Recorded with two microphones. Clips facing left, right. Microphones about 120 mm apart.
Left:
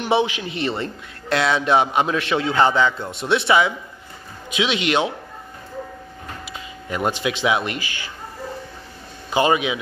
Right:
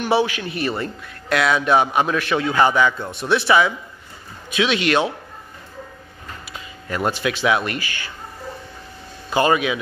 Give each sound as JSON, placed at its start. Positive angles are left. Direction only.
{"t": 0.0, "sound": "speech", "side_deg": 20}
{"t": 6.4, "sound": "speech", "side_deg": 20}
{"t": 9.3, "sound": "speech", "side_deg": 20}